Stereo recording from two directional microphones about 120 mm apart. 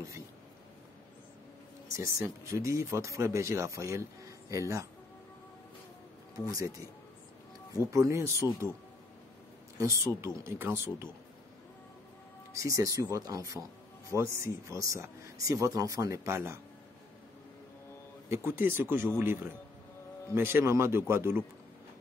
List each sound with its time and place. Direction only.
1.9 s speech: 25° right (ahead or behind)
6.3 s speech: 30° right (ahead or behind)
7.9 s speech: 25° right (ahead or behind)
9.8 s speech: 25° right (ahead or behind)
12.5 s speech: 25° right (ahead or behind)
18.3 s speech: 20° right (ahead or behind)